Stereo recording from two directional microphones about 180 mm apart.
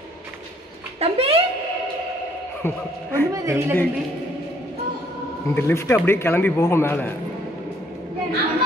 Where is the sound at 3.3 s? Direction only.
15° right (ahead or behind).